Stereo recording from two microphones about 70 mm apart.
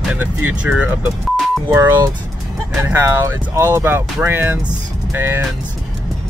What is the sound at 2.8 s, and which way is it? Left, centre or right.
Speech, right.